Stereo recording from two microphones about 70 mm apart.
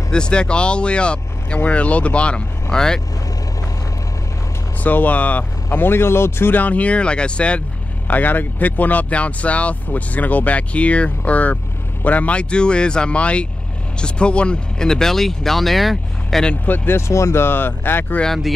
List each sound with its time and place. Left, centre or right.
0.1 s speech: centre
4.8 s speech: left
5.7 s speech: left; by 16.4 s centre
16.6 s speech: left
17.1 s speech: left
18.2 s speech: centre